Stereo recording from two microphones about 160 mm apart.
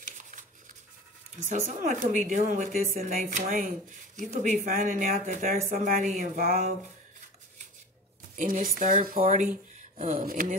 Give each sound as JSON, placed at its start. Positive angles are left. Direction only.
{"t": 1.5, "sound": "speech", "side_deg": -55}
{"t": 8.4, "sound": "speech", "side_deg": -55}